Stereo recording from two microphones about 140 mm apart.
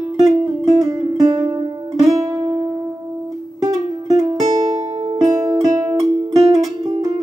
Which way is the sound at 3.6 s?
25° right (ahead or behind).